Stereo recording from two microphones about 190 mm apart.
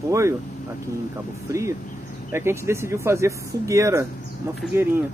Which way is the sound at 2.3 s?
15° right (ahead or behind).